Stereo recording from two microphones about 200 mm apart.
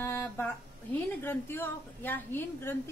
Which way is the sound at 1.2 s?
10° left (ahead or behind).